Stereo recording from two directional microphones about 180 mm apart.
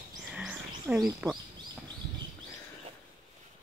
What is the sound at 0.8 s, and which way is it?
Speech, 5° right (ahead or behind).